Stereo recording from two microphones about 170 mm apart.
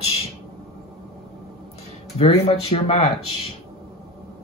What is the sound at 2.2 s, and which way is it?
Speech, 35° left (ahead or behind).